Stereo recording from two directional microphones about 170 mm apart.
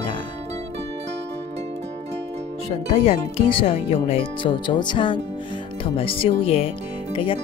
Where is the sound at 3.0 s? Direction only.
35° left (ahead or behind).